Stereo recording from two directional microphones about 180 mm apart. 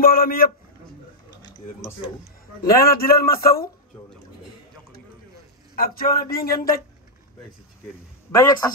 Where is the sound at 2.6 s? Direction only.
55° left (ahead or behind).